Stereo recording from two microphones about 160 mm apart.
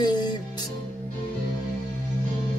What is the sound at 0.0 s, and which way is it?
Music, 25° left (ahead or behind).